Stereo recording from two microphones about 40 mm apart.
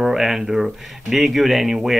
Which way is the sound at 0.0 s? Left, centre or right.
Centre.